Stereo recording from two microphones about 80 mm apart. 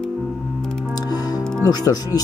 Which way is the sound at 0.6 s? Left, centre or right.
Centre.